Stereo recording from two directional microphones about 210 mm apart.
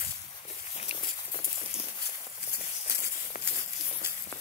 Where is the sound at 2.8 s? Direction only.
50° left (ahead or behind).